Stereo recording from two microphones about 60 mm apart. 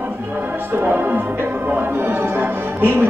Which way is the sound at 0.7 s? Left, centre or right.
Right.